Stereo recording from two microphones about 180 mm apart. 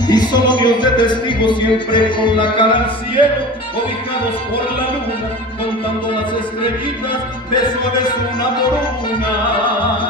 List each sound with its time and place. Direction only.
0.0 s music: 25° left (ahead or behind)
7.5 s music: 25° left (ahead or behind)